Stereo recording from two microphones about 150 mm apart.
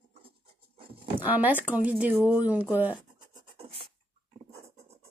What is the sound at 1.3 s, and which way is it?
Speech, 10° right (ahead or behind).